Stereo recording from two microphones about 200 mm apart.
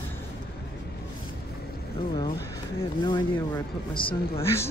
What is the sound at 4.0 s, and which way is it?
Speech, 25° left (ahead or behind).